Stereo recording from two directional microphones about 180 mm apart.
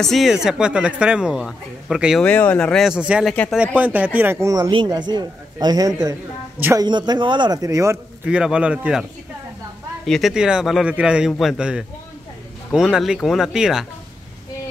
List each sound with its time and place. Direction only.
0.0 s speech: centre (ahead or behind)
2.2 s a man's voice: 10° left (ahead or behind)
10.0 s speech: centre (ahead or behind)